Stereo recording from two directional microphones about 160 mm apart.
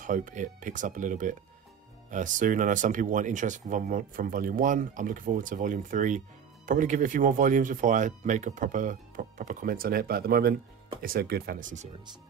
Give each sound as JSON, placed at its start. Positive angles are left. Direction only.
{"t": 0.0, "sound": "speech", "side_deg": -55}